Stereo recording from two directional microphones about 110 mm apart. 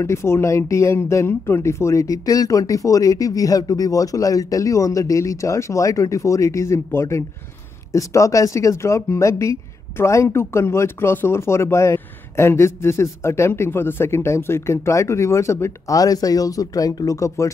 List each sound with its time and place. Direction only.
0.0 s speech: 25° left (ahead or behind)